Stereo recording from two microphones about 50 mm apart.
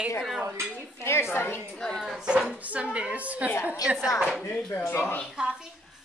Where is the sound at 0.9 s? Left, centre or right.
Left.